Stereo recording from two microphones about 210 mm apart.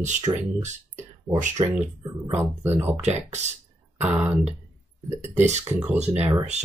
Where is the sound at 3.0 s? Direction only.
30° right (ahead or behind).